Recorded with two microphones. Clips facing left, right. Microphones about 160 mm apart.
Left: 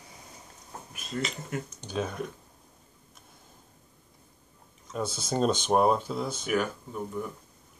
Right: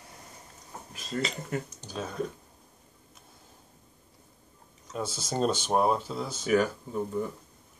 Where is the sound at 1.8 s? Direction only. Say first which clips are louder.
Left 5 dB; 20° left (ahead or behind).